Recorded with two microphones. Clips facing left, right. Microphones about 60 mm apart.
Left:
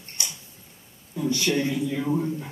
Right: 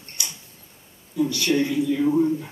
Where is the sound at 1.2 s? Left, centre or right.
Left.